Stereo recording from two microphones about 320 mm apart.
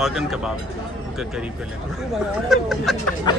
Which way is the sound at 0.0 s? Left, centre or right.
Centre.